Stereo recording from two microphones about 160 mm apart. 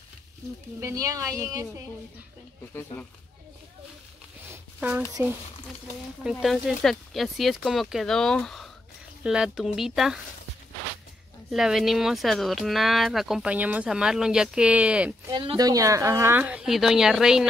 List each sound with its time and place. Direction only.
0.7 s a woman's voice: 20° right (ahead or behind)
4.7 s speech: 10° right (ahead or behind)
6.4 s speech: centre (ahead or behind)
11.5 s speech: centre (ahead or behind)
15.2 s speech: 25° right (ahead or behind); by 17.5 s 5° right (ahead or behind)